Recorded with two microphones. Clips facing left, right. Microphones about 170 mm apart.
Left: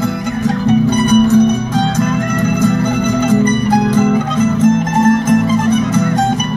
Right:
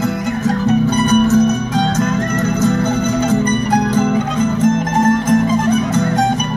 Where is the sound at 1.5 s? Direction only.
10° left (ahead or behind).